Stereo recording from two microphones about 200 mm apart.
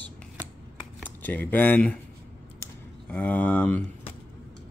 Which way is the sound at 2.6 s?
5° left (ahead or behind).